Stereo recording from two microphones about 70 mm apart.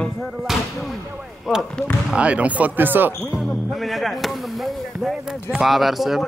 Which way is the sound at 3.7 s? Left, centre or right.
Centre.